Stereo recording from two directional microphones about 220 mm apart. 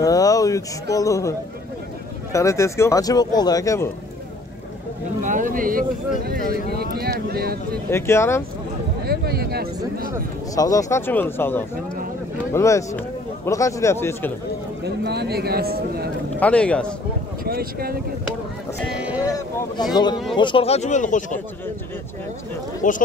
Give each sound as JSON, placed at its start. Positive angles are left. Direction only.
{"t": 0.0, "sound": "a sound", "side_deg": 15}
{"t": 0.9, "sound": "speech", "side_deg": 15}
{"t": 2.3, "sound": "speech", "side_deg": 15}
{"t": 5.2, "sound": "a sound", "side_deg": -35}
{"t": 6.7, "sound": "a man's voice", "side_deg": -45}
{"t": 7.9, "sound": "speech", "side_deg": 10}
{"t": 9.0, "sound": "a sound", "side_deg": -45}
{"t": 10.5, "sound": "speech", "side_deg": 15}
{"t": 14.9, "sound": "a man's voice", "side_deg": -50}
{"t": 16.3, "sound": "a man's voice", "side_deg": 5}
{"t": 17.5, "sound": "a man's voice", "side_deg": -45}
{"t": 19.2, "sound": "a sound", "side_deg": 15}
{"t": 20.3, "sound": "speech", "side_deg": 20}
{"t": 22.8, "sound": "speech", "side_deg": 35}